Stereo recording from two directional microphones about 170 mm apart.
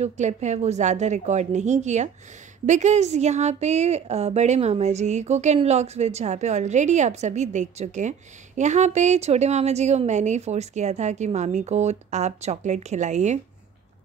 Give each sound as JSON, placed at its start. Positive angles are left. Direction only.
{"t": 0.0, "sound": "a woman's voice", "side_deg": -40}